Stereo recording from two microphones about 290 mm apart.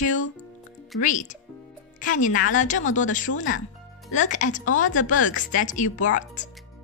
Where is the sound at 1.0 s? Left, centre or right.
Left.